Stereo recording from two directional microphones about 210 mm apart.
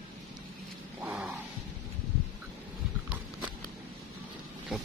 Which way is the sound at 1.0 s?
5° right (ahead or behind).